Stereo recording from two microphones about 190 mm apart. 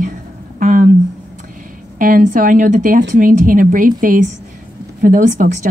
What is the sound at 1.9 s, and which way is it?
A woman's voice, 45° right (ahead or behind).